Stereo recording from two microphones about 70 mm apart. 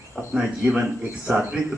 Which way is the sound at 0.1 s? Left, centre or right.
Centre.